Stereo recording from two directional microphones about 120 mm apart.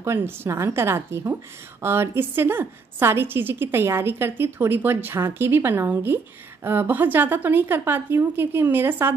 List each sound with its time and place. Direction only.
0.0 s a woman's voice: 20° right (ahead or behind)